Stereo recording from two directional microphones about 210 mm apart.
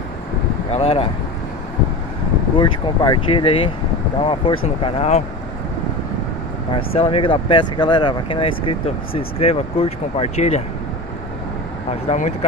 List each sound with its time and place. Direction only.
0.7 s speech: 30° left (ahead or behind)
2.5 s speech: 20° left (ahead or behind)
6.7 s speech: 25° left (ahead or behind)
12.1 s speech: 30° left (ahead or behind)